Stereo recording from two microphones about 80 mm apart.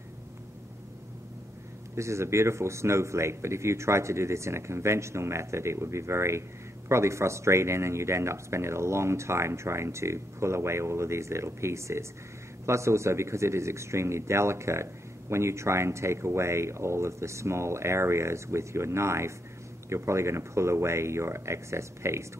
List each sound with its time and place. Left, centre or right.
2.0 s speech: right